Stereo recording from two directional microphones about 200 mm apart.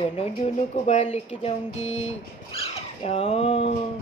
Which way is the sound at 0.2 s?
35° left (ahead or behind).